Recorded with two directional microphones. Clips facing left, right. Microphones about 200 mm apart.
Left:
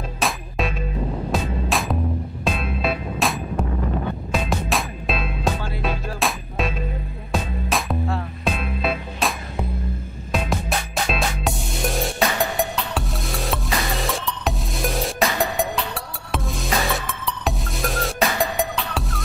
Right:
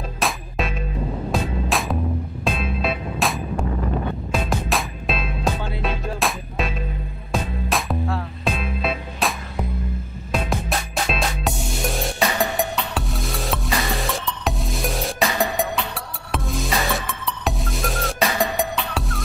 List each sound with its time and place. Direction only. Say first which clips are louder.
0.2 s music: left 1 dB; centre (ahead or behind)
10.3 s music: even; centre (ahead or behind)